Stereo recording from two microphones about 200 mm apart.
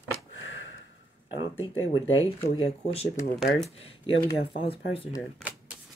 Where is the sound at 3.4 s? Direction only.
Centre (ahead or behind).